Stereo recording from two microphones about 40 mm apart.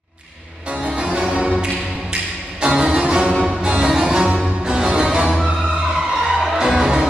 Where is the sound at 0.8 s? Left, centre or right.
Right.